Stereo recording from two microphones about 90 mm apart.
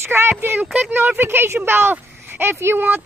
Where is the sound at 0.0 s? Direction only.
25° right (ahead or behind).